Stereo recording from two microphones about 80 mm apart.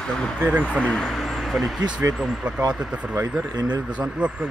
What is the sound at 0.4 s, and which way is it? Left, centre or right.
Speech, centre.